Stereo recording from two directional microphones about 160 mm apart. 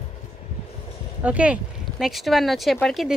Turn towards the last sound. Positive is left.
turn(degrees=0)  # may be behind; listen again after turning